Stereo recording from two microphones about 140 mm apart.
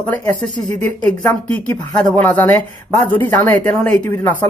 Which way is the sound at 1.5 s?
10° left (ahead or behind).